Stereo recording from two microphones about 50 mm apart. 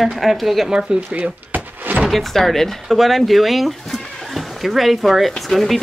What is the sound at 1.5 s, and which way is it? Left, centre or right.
Thunk, right.